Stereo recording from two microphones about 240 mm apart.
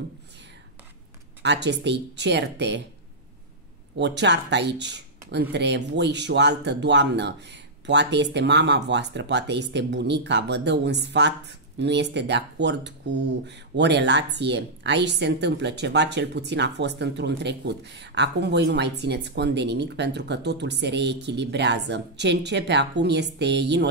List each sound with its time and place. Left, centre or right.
1.4 s speech: right
4.0 s speech: right